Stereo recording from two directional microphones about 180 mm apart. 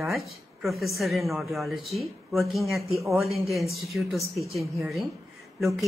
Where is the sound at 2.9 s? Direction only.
15° right (ahead or behind).